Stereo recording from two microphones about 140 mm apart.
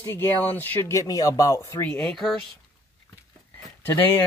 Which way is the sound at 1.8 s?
5° left (ahead or behind).